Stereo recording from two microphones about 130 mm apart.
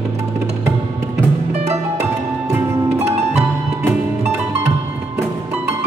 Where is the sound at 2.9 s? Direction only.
55° right (ahead or behind).